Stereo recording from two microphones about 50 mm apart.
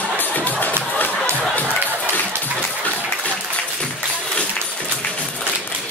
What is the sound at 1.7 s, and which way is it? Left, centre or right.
Music, right.